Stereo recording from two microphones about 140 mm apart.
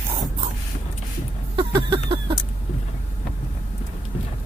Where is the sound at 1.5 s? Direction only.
35° right (ahead or behind).